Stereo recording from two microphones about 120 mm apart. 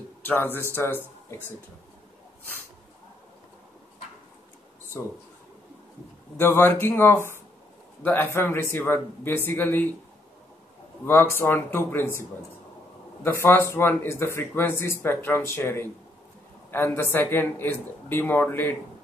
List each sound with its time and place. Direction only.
0.2 s speech: 15° left (ahead or behind)
6.3 s speech: 20° left (ahead or behind)
11.1 s speech: 20° left (ahead or behind)